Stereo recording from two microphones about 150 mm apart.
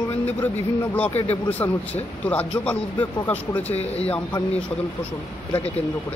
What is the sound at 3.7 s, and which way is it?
Speech, 45° left (ahead or behind).